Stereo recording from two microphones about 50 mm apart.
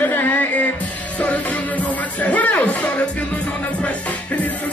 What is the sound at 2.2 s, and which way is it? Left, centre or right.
Music, left.